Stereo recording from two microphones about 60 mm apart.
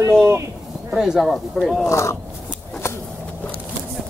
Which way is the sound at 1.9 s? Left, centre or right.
Left.